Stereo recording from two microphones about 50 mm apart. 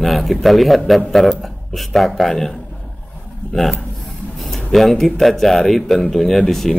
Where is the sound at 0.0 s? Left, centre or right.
Centre.